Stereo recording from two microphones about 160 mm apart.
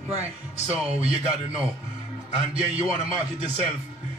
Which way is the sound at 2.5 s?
35° right (ahead or behind).